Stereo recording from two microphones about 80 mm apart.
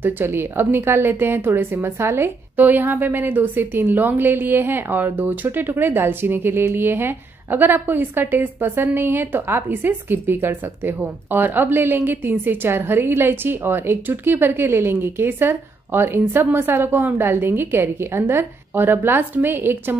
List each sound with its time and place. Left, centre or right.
0.0 s a woman's voice: right